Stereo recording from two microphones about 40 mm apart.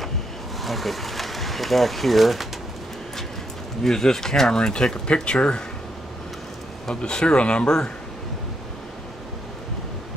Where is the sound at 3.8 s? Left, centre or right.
Centre.